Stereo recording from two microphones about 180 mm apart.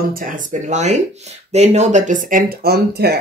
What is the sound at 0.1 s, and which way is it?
Speech, 45° right (ahead or behind).